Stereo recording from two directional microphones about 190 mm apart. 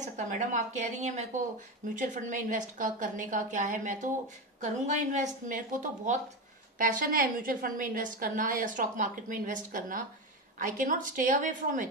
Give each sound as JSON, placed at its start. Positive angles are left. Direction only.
{"t": 0.0, "sound": "a woman's voice", "side_deg": -40}